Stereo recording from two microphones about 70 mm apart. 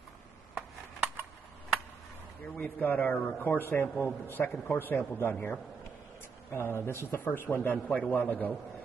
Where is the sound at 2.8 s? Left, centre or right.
Left.